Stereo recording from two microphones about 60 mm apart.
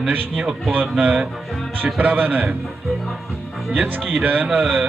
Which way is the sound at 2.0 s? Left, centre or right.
Right.